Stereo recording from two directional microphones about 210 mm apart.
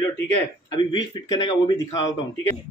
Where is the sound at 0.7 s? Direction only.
20° left (ahead or behind).